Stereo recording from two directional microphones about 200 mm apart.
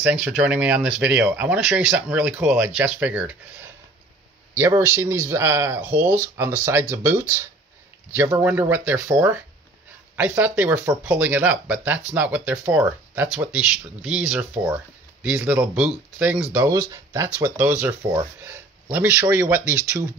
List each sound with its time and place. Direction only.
0.0 s speech: 10° right (ahead or behind)